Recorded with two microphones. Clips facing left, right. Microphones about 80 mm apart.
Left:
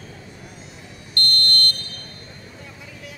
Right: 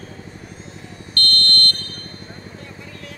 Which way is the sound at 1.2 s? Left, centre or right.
Centre.